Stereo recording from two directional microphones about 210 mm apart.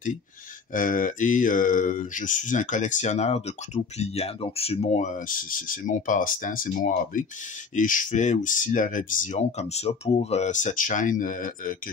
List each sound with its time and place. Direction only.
0.7 s speech: 40° left (ahead or behind)